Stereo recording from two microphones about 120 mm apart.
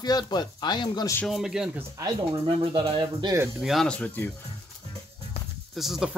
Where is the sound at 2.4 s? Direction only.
45° right (ahead or behind).